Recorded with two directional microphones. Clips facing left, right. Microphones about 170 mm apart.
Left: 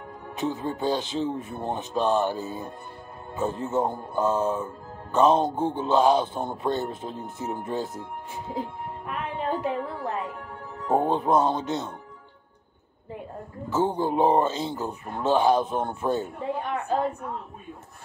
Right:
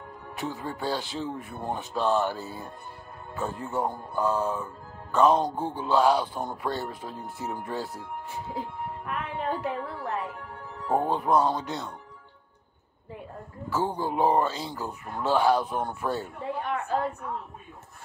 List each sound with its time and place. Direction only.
0.4 s speech: 20° left (ahead or behind)
9.0 s music: 20° left (ahead or behind)
10.9 s speech: 20° left (ahead or behind)
13.7 s speech: 20° left (ahead or behind)